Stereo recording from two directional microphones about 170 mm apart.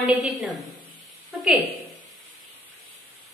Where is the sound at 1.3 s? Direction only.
Centre (ahead or behind).